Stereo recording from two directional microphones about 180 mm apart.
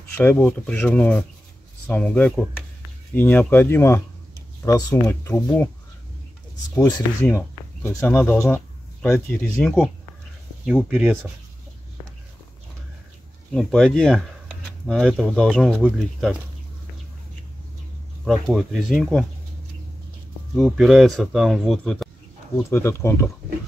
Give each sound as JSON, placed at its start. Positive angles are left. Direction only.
{"t": 0.2, "sound": "speech", "side_deg": 10}
{"t": 6.7, "sound": "speech", "side_deg": 20}
{"t": 13.6, "sound": "speech", "side_deg": 5}
{"t": 18.2, "sound": "speech", "side_deg": 0}
{"t": 20.5, "sound": "speech", "side_deg": 0}
{"t": 22.6, "sound": "speech", "side_deg": 15}